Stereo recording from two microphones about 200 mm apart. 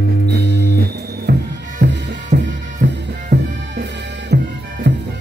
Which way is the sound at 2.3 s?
40° right (ahead or behind).